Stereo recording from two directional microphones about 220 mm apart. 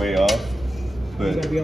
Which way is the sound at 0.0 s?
Centre (ahead or behind).